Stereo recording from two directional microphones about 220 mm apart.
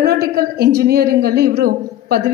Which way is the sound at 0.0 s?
45° right (ahead or behind).